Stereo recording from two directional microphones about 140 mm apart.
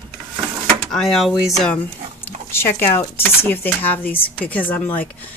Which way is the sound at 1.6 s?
10° left (ahead or behind).